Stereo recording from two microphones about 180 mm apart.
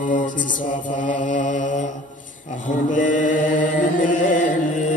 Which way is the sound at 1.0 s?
45° left (ahead or behind).